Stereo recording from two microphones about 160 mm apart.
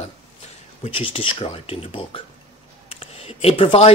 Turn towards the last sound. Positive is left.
turn(degrees=40)  # may be behind; listen again after turning